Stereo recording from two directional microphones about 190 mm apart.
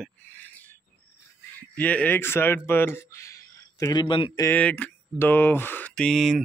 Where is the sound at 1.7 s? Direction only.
10° left (ahead or behind); by 4.4 s 25° left (ahead or behind).